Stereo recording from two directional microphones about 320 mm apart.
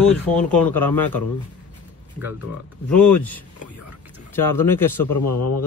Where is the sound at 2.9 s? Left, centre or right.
Centre.